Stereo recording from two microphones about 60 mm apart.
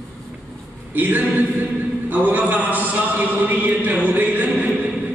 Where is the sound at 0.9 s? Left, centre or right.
Right.